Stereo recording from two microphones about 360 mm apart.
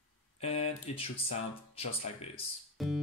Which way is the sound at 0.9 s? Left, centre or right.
Centre.